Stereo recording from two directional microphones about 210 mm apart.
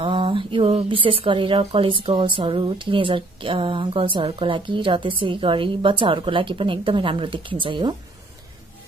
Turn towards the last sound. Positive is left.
turn(degrees=-20)  # may be behind; listen again after turning